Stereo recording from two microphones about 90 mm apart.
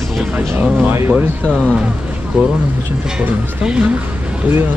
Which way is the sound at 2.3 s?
10° right (ahead or behind).